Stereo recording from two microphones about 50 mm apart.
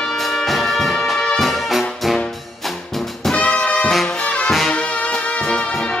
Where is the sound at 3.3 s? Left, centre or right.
Left.